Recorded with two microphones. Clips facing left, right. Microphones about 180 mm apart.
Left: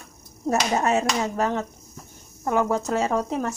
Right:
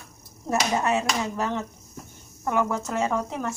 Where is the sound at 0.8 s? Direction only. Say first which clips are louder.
Left 2 dB; 45° left (ahead or behind).